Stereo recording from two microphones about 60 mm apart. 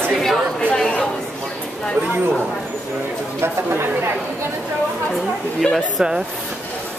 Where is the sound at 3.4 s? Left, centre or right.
Right.